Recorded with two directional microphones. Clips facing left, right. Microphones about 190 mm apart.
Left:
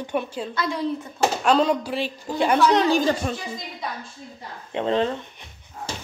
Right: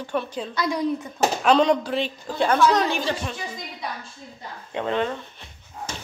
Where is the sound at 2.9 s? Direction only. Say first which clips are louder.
Left 6 dB; 40° left (ahead or behind).